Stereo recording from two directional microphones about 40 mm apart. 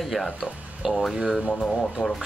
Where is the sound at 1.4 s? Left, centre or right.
Left.